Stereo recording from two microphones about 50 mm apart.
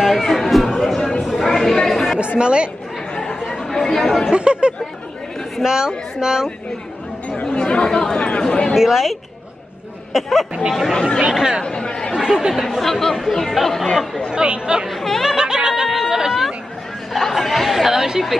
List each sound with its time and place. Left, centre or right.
0.0 s music: centre
1.4 s chatter: centre
2.1 s a woman's voice: right
3.2 s chatter: centre
4.3 s speech: centre
7.4 s speech: centre
8.7 s speech: centre
10.9 s speech: centre
12.2 s speech: centre
12.6 s speech: centre
14.3 s speech: centre
14.9 s speech: centre
15.2 s snicker: centre
17.1 s speech: centre